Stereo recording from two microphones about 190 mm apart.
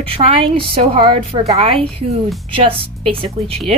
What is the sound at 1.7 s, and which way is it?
Speech, centre (ahead or behind).